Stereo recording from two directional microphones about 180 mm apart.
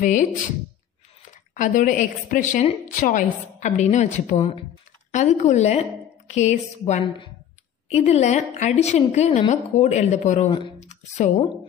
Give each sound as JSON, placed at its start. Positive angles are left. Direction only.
{"t": 0.0, "sound": "a woman's voice", "side_deg": 45}
{"t": 1.5, "sound": "a woman's voice", "side_deg": 45}
{"t": 10.8, "sound": "a sound", "side_deg": 40}